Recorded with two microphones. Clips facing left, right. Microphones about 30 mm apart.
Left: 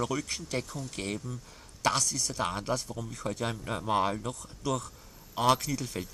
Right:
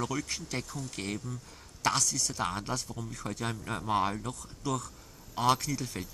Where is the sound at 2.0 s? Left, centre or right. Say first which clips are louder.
Even; left.